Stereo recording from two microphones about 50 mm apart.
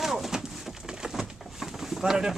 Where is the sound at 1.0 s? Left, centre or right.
Centre.